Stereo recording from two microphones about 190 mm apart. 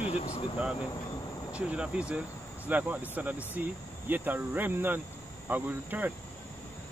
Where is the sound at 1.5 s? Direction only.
5° right (ahead or behind).